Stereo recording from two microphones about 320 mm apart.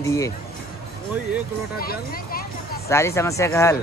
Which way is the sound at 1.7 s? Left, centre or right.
Left.